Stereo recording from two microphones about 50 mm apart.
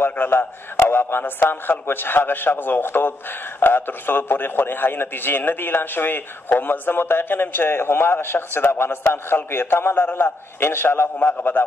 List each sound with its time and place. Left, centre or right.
0.0 s a man's voice: left
11.1 s a man's voice: left